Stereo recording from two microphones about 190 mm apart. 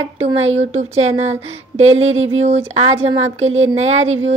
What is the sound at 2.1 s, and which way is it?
Speech, 90° right.